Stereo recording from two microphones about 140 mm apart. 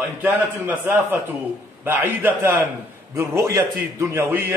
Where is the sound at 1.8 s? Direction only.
15° right (ahead or behind).